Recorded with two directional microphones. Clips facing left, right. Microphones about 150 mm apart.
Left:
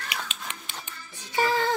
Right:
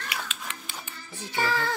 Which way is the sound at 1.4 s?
20° left (ahead or behind).